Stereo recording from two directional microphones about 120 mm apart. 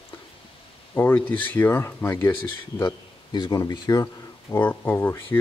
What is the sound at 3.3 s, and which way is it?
Speech, 35° left (ahead or behind).